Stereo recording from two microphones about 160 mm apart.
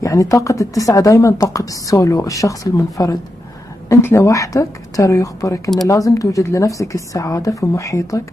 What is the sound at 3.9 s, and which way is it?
Speech, 15° left (ahead or behind).